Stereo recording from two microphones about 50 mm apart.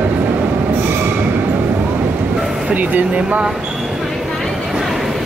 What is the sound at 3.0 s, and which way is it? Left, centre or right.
Speech, right.